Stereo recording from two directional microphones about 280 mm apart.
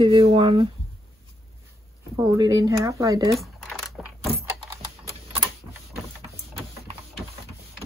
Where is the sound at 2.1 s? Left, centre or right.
Centre.